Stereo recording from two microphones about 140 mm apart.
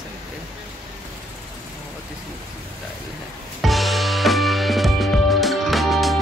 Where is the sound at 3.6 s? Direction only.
Centre (ahead or behind).